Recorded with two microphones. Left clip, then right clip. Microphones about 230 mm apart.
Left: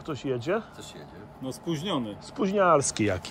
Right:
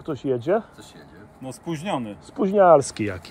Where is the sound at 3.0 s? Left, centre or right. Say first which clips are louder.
Left 1 dB; centre.